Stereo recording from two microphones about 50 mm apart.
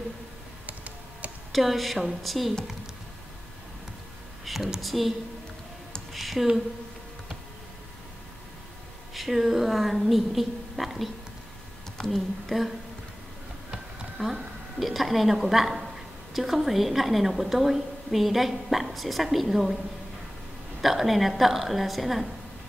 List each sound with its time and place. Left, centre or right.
0.7 s computer keyboard: right
1.5 s a woman's voice: centre
4.5 s a woman's voice: centre
6.1 s speech: centre
9.1 s a woman's voice: centre
20.8 s a woman's voice: centre